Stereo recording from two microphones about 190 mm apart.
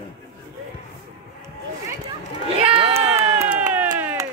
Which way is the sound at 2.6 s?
30° right (ahead or behind).